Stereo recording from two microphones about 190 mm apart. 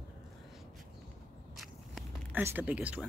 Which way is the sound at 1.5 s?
Centre (ahead or behind).